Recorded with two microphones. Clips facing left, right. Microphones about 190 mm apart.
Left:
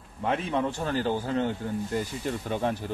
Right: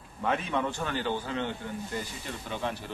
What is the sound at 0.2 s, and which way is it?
A man's voice, 25° left (ahead or behind).